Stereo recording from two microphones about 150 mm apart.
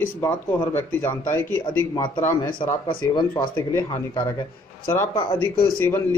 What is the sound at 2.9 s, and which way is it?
Speech, 30° left (ahead or behind).